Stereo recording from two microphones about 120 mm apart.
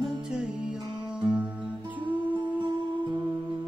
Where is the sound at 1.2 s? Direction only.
10° right (ahead or behind).